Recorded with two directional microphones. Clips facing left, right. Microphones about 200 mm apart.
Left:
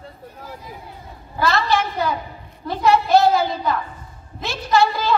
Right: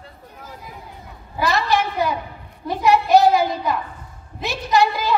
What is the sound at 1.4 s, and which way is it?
A woman's voice, 15° right (ahead or behind).